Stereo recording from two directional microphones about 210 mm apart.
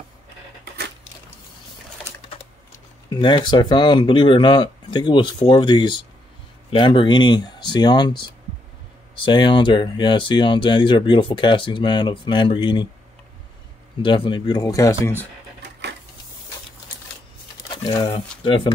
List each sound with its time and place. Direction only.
3.1 s speech: 20° left (ahead or behind)
14.0 s speech: 25° left (ahead or behind)
17.8 s speech: 20° left (ahead or behind)